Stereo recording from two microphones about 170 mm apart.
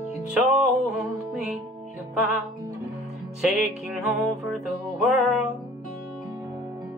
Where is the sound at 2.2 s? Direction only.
15° right (ahead or behind).